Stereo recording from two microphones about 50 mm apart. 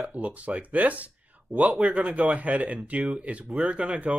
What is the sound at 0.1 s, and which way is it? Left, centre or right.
Speech, right.